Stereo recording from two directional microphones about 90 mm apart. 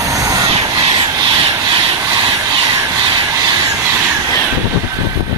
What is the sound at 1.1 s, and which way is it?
Rub, 50° right (ahead or behind).